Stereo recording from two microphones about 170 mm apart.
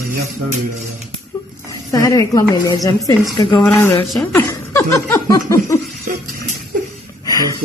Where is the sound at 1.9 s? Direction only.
20° left (ahead or behind).